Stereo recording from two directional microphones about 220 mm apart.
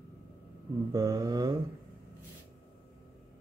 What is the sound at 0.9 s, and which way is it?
Mantra, 15° right (ahead or behind).